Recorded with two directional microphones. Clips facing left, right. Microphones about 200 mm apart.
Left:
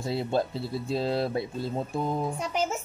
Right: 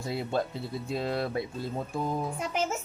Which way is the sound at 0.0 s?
30° left (ahead or behind).